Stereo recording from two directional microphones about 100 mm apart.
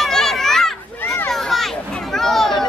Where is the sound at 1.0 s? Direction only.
20° left (ahead or behind).